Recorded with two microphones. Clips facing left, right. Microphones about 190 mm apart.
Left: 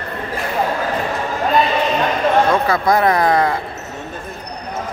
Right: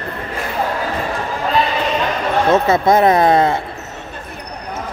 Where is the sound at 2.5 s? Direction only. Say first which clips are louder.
Right 3 dB; 25° right (ahead or behind).